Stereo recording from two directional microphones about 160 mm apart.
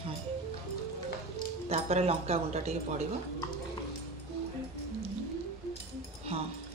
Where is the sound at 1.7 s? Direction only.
40° right (ahead or behind).